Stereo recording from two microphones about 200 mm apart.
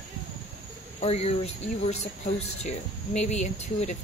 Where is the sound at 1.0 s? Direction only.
30° left (ahead or behind).